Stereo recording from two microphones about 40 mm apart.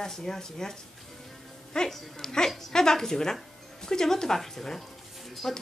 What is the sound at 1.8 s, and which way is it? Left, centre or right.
Speech, left.